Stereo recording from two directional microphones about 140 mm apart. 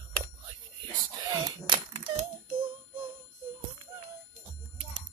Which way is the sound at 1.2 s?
30° right (ahead or behind).